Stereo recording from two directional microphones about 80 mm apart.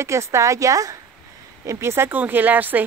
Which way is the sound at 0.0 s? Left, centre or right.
Right.